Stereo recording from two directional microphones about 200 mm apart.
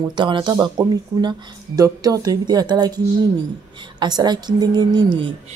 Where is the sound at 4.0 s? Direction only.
20° right (ahead or behind).